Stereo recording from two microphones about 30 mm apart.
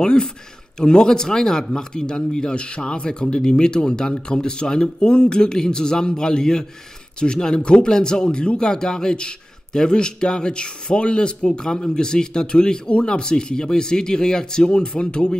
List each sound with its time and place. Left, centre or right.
0.0 s speech: left